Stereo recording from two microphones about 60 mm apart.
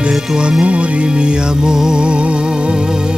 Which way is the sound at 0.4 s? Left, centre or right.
Centre.